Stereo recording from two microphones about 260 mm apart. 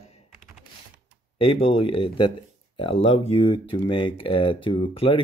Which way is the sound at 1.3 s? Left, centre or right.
Left.